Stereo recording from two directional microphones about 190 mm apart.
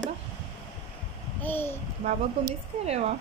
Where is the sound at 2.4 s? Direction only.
30° right (ahead or behind).